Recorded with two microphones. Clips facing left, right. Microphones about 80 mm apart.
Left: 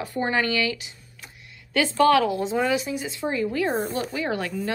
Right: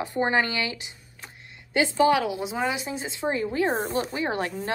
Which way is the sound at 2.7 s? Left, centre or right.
Right.